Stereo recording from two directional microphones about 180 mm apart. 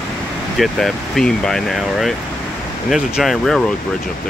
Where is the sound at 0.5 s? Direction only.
Centre (ahead or behind).